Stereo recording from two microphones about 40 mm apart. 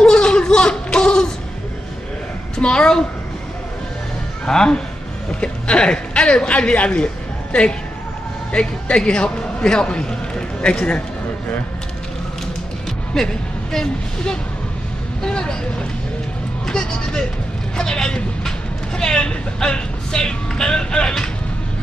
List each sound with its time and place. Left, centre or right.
0.0 s a sound: centre
2.6 s speech: left
4.5 s speech: centre
8.5 s speech: left
13.1 s speech: centre
16.6 s a man's voice: centre